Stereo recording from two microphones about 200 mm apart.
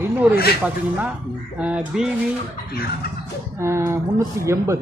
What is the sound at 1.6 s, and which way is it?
Speech, 5° right (ahead or behind).